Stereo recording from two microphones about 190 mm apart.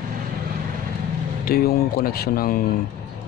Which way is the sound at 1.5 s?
50° left (ahead or behind).